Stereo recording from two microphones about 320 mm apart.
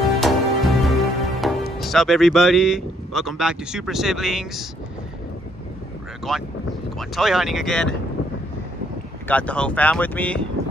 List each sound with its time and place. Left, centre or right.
0.0 s music: centre
6.3 s speech: centre
9.3 s speech: centre